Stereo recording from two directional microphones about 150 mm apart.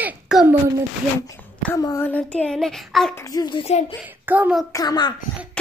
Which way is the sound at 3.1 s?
20° left (ahead or behind).